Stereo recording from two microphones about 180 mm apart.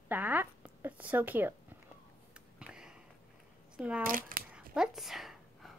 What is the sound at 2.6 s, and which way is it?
Sniff, 5° right (ahead or behind).